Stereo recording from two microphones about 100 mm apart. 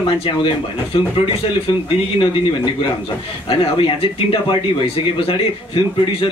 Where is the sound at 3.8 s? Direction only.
60° left (ahead or behind).